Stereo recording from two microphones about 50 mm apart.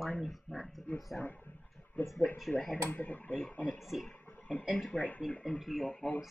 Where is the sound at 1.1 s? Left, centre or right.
Left.